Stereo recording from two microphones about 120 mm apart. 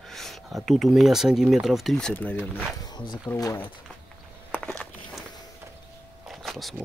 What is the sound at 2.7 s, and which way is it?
Speech, 35° left (ahead or behind).